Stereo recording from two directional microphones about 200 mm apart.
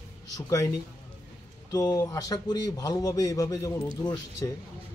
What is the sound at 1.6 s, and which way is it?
A man's voice, 15° left (ahead or behind).